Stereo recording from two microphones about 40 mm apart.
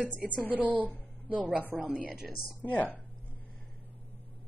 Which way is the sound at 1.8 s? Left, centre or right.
Right.